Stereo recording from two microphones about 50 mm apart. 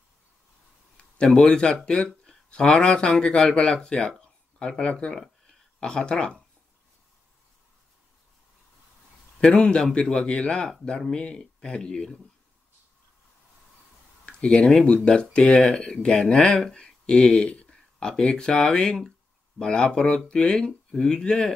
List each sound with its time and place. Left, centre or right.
1.4 s speech: centre
9.4 s speech: centre
10.2 s speech: centre
10.5 s speech: centre
14.2 s speech: centre